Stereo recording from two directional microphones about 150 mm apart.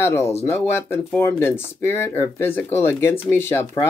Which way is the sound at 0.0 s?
20° left (ahead or behind).